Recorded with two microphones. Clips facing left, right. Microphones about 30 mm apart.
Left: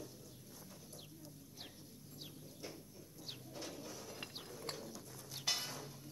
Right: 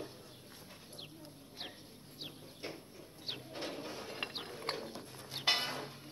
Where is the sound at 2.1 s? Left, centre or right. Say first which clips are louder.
Right 5 dB; right.